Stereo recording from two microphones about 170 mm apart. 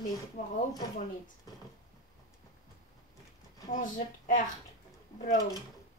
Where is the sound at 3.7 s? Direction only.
50° left (ahead or behind).